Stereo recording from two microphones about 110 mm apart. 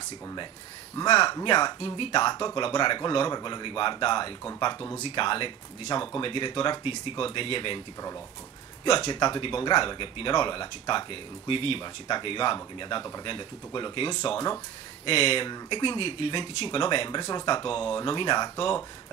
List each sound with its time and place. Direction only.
0.9 s speech: 40° left (ahead or behind)
9.1 s speech: 45° left (ahead or behind)
17.2 s speech: 35° left (ahead or behind)
17.6 s speech: 55° left (ahead or behind)